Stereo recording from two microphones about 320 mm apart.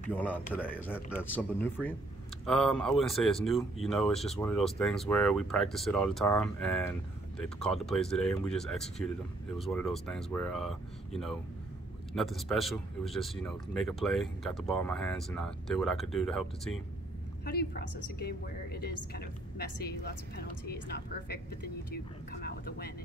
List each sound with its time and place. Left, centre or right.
0.1 s speech: centre
17.5 s a woman's voice: left
21.9 s a woman's voice: left